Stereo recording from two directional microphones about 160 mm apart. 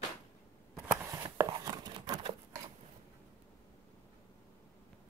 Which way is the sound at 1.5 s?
30° right (ahead or behind).